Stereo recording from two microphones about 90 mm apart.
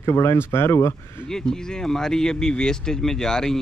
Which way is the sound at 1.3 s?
5° left (ahead or behind).